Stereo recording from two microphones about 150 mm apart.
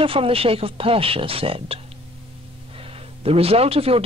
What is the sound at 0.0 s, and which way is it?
Speech, 35° right (ahead or behind).